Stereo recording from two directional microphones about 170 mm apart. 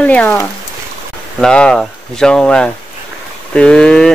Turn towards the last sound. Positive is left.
turn(degrees=5)  # may be behind; listen again after turning